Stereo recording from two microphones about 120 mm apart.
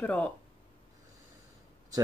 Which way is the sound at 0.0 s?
10° left (ahead or behind).